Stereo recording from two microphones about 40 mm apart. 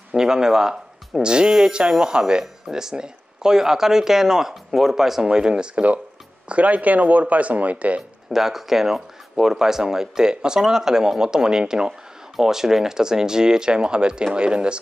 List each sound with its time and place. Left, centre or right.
0.1 s speech: centre
2.4 s speech: centre
5.3 s speech: right
6.5 s speech: right
8.3 s speech: centre; by 14.8 s right